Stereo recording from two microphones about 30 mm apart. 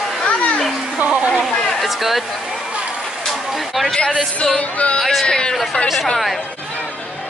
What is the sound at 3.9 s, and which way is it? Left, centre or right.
Speech, left.